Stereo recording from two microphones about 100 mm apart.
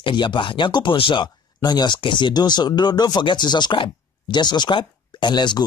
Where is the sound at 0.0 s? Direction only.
55° left (ahead or behind).